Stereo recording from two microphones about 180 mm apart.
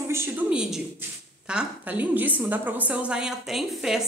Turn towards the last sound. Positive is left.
turn(degrees=0)  # may be behind; listen again after turning